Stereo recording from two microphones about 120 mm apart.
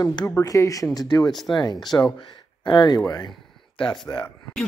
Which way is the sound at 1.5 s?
35° left (ahead or behind).